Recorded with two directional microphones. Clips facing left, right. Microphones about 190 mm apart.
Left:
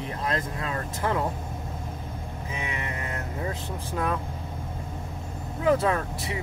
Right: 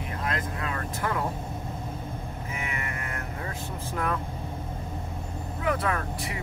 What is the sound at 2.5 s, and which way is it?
Music, 20° left (ahead or behind).